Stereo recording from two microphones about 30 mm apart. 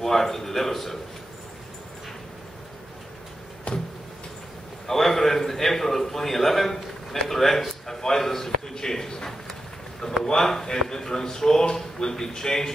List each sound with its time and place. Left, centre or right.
0.0 s a man's voice: centre
3.7 s a sound: left
4.8 s a man's voice: centre